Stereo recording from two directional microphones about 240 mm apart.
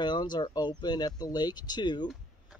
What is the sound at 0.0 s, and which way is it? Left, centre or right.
Speech, centre.